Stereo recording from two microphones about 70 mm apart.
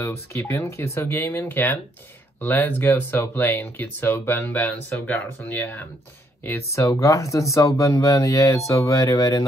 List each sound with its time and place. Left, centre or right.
0.0 s speech: left
5.4 s speech: left
6.9 s speech: left